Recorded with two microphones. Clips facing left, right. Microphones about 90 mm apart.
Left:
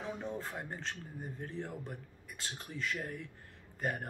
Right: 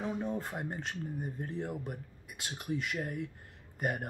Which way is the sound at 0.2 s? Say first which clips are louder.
Right 4 dB; 15° right (ahead or behind).